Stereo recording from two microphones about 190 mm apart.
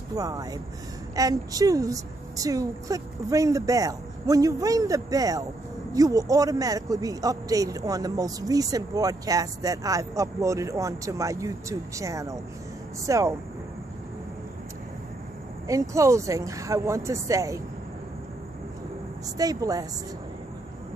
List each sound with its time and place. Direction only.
0.1 s speech: 20° right (ahead or behind)
15.6 s speech: 15° right (ahead or behind)
19.3 s speech: 20° right (ahead or behind)